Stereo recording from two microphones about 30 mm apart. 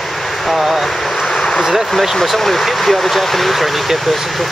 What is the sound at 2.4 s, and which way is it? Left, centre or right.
Speech, centre.